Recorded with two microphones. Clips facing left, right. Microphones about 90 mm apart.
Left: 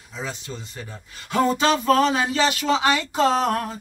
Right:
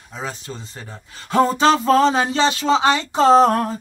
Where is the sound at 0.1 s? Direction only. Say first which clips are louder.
Right 2 dB; 40° right (ahead or behind).